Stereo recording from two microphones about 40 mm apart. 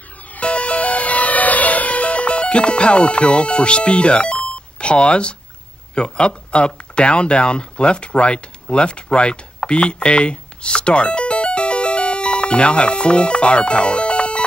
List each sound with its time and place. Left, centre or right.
0.4 s music: left
5.9 s speech: left